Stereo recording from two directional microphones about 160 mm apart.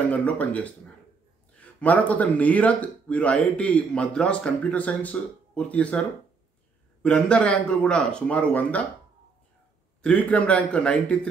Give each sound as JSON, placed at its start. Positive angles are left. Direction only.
{"t": 0.1, "sound": "speech", "side_deg": 10}
{"t": 10.0, "sound": "speech", "side_deg": 5}